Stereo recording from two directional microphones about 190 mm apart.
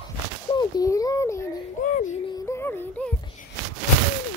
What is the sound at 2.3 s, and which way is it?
Music, 15° left (ahead or behind).